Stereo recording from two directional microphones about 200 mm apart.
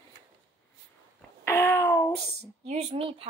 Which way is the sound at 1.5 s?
15° left (ahead or behind).